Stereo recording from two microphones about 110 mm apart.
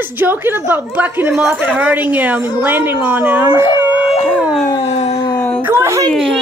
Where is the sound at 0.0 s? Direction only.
20° right (ahead or behind).